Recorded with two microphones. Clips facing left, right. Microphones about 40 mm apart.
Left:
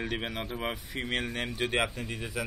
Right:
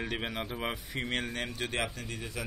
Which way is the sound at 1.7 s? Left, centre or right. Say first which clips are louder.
Left 4 dB; centre.